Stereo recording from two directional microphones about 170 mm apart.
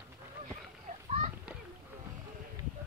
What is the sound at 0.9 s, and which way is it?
Children playing, 40° right (ahead or behind).